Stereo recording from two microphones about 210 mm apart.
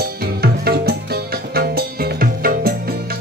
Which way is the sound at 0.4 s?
50° right (ahead or behind).